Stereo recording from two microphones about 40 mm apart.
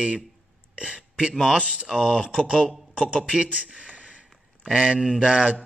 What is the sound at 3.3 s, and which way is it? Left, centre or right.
Speech, right.